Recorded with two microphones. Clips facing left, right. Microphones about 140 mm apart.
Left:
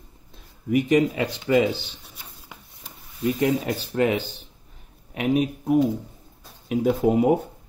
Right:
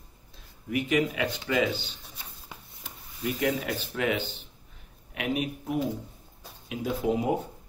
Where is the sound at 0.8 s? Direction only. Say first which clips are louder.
Left 6 dB; 40° left (ahead or behind).